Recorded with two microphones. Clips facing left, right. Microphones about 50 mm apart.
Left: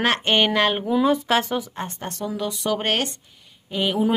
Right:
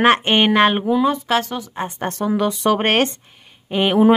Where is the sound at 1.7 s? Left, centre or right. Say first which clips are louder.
Right 5 dB; centre.